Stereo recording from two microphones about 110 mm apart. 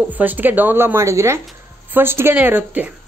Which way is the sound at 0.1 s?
15° right (ahead or behind).